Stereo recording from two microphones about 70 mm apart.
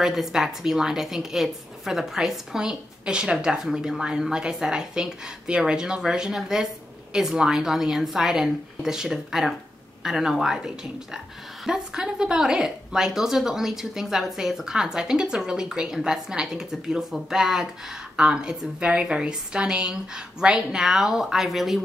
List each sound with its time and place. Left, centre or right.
0.0 s a woman's voice: centre